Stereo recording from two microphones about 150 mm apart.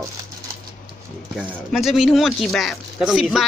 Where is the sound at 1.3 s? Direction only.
Centre (ahead or behind).